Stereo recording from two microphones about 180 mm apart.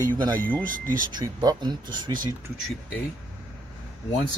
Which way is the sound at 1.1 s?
20° right (ahead or behind).